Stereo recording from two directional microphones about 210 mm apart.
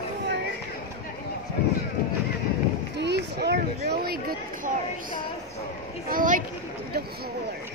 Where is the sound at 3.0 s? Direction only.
55° right (ahead or behind).